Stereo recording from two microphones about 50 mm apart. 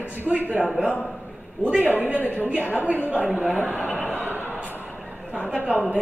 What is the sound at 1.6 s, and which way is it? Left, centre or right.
A woman's voice, right.